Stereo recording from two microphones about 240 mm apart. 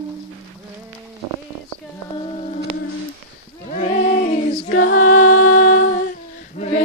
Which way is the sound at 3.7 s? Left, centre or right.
Left.